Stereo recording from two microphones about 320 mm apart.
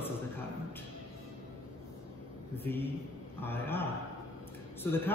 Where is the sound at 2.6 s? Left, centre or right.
Centre.